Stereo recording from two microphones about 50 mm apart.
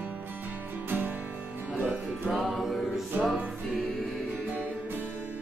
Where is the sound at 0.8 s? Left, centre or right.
Right.